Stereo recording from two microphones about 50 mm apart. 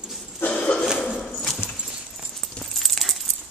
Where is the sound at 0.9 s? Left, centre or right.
Left.